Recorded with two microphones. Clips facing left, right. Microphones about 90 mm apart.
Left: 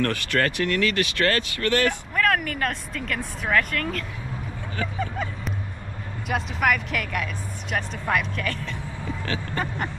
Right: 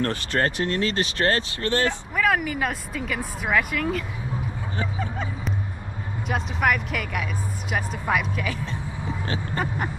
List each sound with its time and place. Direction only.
0.0 s speech: 20° right (ahead or behind)
2.1 s speech: 5° right (ahead or behind)
8.6 s vehicle: 20° right (ahead or behind)